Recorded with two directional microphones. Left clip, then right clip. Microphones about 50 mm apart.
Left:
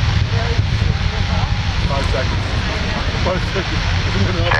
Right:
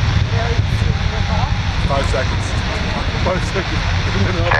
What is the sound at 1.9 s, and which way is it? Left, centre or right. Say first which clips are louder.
Speech: right 3 dB; right.